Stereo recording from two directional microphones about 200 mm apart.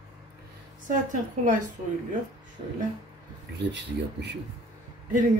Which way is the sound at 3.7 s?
60° right (ahead or behind).